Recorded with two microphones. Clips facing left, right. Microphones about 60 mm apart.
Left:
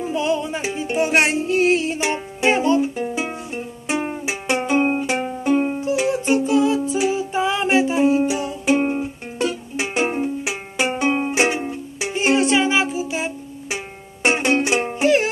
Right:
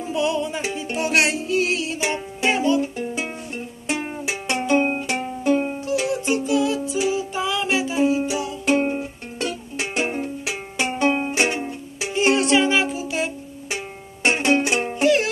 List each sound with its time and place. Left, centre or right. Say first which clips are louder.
0.0 s music: left 1 dB; left
2.0 s music: left 2 dB; centre
2.5 s music: left 2 dB; left
2.8 s music: left 3 dB; centre
6.0 s music: left 5 dB; left
8.6 s music: left 2 dB; centre
12.1 s music: even; left
14.5 s music: right 2 dB; centre
14.8 s music: left 1 dB; centre